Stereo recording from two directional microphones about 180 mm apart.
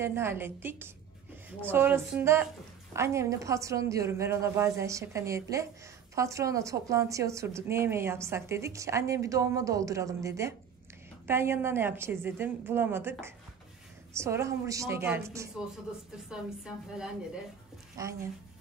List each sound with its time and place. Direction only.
0.0 s a woman's voice: 15° right (ahead or behind)
14.1 s a woman's voice: 15° right (ahead or behind)
16.3 s speech: 5° right (ahead or behind)
18.0 s speech: 20° right (ahead or behind)